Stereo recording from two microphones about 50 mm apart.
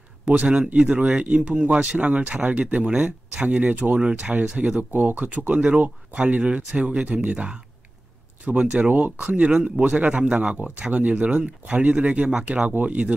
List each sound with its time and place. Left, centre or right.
0.2 s speech: right
9.5 s speech: centre
9.8 s speech: right